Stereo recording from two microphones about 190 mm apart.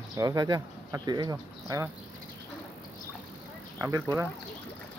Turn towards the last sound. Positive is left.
turn(degrees=-15)  # may be behind; listen again after turning